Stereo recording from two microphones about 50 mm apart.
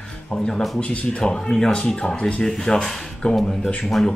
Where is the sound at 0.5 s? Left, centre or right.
Centre.